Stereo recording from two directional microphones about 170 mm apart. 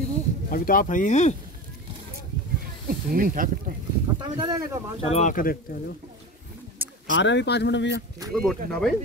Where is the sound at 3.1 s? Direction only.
55° right (ahead or behind).